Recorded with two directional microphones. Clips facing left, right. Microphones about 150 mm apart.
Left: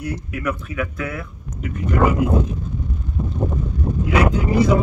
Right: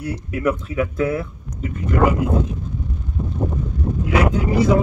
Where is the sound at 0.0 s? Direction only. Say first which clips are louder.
Right 4 dB; 25° right (ahead or behind).